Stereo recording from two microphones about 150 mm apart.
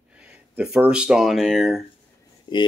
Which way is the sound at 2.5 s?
35° left (ahead or behind).